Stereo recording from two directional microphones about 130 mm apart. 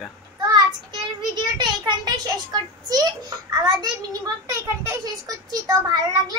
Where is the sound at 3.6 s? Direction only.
35° right (ahead or behind).